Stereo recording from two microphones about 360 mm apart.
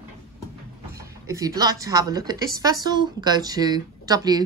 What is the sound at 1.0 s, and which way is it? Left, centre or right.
Speech, centre.